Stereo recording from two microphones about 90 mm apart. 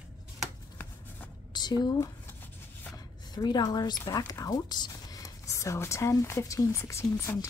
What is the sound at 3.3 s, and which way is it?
Speech, 50° left (ahead or behind).